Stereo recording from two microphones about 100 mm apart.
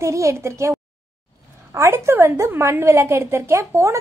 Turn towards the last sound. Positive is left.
turn(degrees=-30)  # may be behind; listen again after turning